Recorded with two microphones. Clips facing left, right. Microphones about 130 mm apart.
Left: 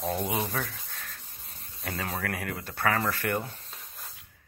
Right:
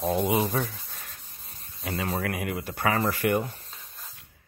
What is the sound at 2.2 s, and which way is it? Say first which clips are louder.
Speech: right 4 dB; 15° right (ahead or behind).